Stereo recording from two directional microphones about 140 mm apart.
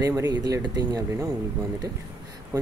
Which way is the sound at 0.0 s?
25° right (ahead or behind).